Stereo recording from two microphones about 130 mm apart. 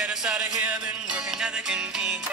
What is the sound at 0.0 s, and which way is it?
Music, 5° right (ahead or behind).